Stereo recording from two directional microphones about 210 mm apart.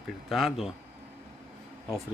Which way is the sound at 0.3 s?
Centre (ahead or behind).